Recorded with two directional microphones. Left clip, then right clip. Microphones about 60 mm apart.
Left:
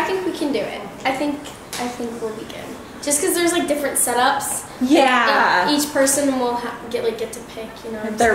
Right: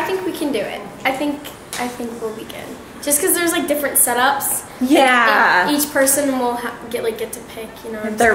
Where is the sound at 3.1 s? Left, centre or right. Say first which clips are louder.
Right 1 dB; right.